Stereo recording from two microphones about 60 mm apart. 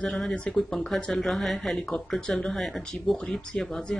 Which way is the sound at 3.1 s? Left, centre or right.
Centre.